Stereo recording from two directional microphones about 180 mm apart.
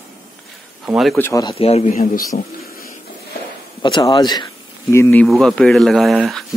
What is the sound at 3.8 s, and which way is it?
Speech, 25° left (ahead or behind).